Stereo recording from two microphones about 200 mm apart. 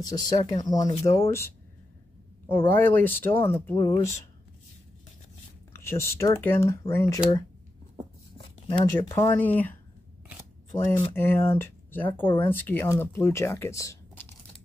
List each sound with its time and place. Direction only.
0.1 s speech: 20° left (ahead or behind)
5.7 s speech: 15° left (ahead or behind)
8.4 s a sound: 25° left (ahead or behind)
9.1 s speech: 10° left (ahead or behind)
11.1 s speech: 10° left (ahead or behind)